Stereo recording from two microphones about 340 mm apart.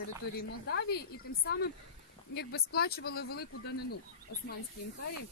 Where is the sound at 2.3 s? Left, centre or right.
Left.